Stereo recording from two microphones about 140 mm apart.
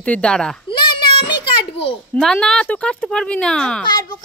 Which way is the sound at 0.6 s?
35° left (ahead or behind).